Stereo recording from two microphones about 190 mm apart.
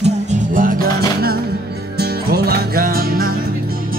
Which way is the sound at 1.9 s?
55° right (ahead or behind).